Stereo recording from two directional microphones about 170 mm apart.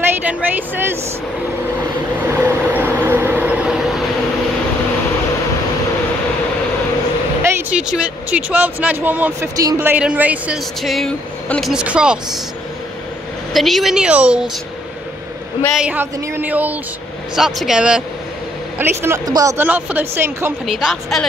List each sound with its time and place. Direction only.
0.2 s speech: 10° right (ahead or behind)
2.2 s vehicle: 10° right (ahead or behind)
7.4 s speech: 5° right (ahead or behind)
13.5 s speech: centre (ahead or behind)
15.6 s speech: 5° right (ahead or behind); by 19.6 s 20° right (ahead or behind)
19.6 s speech: 10° right (ahead or behind)
20.6 s speech: centre (ahead or behind)